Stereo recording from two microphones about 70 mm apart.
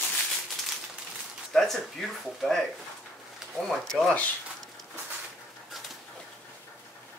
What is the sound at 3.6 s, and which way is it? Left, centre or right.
Speech, centre.